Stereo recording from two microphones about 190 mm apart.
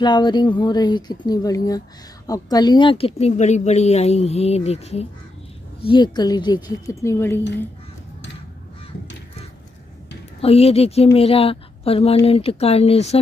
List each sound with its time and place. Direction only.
0.0 s a woman's voice: 25° left (ahead or behind)
10.4 s a woman's voice: 30° left (ahead or behind)